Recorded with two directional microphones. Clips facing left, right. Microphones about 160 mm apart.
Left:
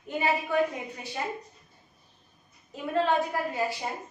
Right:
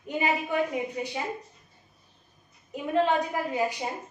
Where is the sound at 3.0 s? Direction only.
15° right (ahead or behind).